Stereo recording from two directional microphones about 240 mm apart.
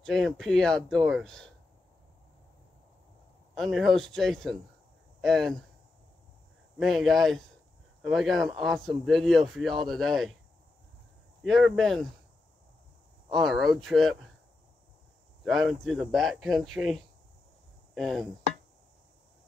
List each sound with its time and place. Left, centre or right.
0.0 s speech: centre
3.5 s speech: centre
6.8 s speech: centre
11.4 s speech: centre
13.3 s speech: centre
15.4 s speech: centre